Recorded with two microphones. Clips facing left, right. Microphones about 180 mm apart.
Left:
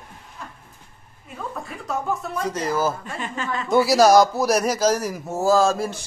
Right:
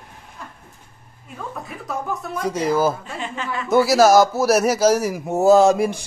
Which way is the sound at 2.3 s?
10° right (ahead or behind).